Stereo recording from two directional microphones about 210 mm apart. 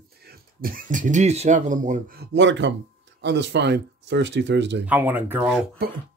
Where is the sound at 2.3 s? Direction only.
60° right (ahead or behind).